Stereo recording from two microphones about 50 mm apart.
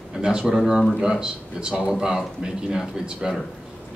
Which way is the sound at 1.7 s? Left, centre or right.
Centre.